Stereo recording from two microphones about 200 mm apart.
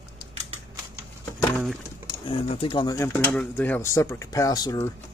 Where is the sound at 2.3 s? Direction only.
30° left (ahead or behind).